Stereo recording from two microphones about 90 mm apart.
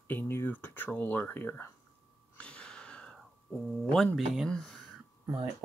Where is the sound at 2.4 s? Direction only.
10° left (ahead or behind).